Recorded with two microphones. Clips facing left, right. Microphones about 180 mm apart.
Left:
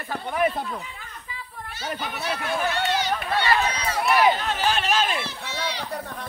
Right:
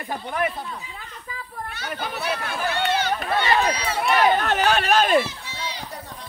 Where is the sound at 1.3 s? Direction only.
50° right (ahead or behind).